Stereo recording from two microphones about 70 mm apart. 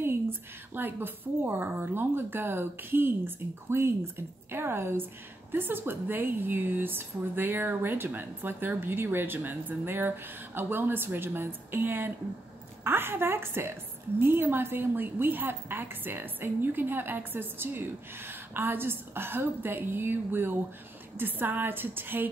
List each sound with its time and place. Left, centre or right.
0.7 s speech: right